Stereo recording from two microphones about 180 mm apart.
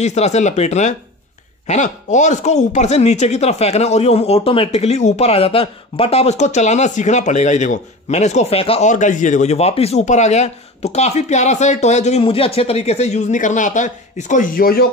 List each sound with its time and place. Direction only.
0.0 s speech: 40° left (ahead or behind); by 14.9 s 55° left (ahead or behind)